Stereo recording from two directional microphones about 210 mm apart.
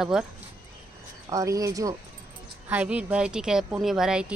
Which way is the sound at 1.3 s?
15° right (ahead or behind).